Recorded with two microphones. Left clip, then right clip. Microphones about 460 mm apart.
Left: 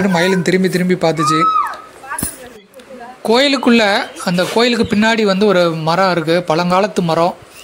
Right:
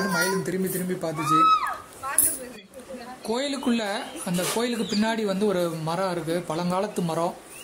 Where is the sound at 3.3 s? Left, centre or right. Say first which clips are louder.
Left 15 dB; right.